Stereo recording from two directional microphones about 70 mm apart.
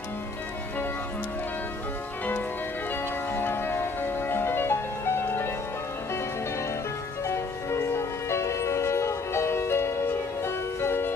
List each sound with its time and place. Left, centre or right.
3.3 s music: left
7.2 s music: left